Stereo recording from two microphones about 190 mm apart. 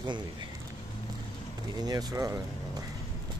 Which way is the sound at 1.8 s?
20° right (ahead or behind).